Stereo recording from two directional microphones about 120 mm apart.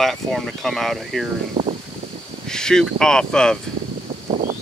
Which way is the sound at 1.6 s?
50° right (ahead or behind).